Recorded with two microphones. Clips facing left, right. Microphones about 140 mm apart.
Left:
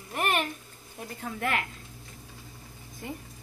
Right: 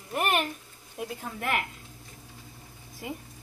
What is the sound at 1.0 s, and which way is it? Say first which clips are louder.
Speech: left 1 dB; 5° right (ahead or behind).